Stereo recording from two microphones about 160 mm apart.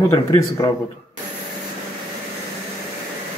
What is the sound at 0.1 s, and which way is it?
Speech, 25° left (ahead or behind).